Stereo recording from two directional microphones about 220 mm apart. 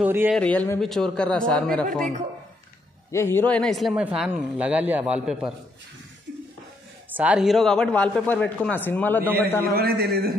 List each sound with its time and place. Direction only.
0.0 s speech: 10° right (ahead or behind)
0.4 s speech: 5° left (ahead or behind)
3.1 s speech: 10° left (ahead or behind)
7.2 s speech: 5° right (ahead or behind)
9.6 s a man's voice: 45° right (ahead or behind)